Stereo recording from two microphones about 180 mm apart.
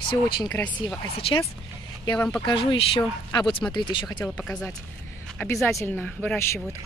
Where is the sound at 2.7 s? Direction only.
30° left (ahead or behind).